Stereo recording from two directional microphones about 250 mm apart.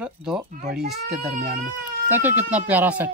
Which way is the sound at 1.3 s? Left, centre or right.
Right.